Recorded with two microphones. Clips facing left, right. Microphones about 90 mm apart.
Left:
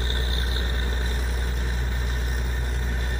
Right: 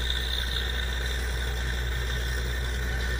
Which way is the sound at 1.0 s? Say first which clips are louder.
Left 3 dB; centre (ahead or behind).